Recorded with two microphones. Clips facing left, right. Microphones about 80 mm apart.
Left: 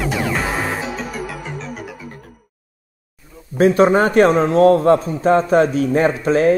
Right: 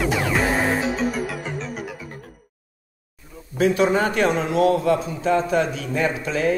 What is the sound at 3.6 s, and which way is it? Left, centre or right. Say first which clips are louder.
A man's voice: left 6 dB; left.